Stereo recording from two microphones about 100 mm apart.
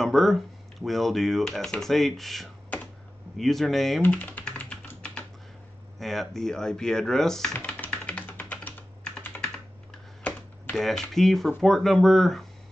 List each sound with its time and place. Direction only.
0.0 s speech: centre (ahead or behind)
4.0 s typing: 15° left (ahead or behind)
5.9 s speech: 5° left (ahead or behind)
7.5 s computer keyboard: 15° left (ahead or behind)
10.8 s speech: 5° left (ahead or behind)